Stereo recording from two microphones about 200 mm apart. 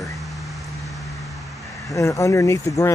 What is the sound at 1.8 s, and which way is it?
Speech, 15° left (ahead or behind).